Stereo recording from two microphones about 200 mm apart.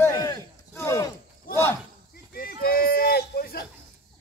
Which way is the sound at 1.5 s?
45° left (ahead or behind).